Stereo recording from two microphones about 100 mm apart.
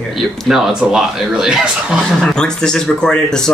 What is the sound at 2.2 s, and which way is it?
Speech, 5° left (ahead or behind).